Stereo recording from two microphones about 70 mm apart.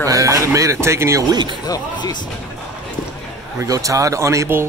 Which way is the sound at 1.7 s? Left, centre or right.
Left.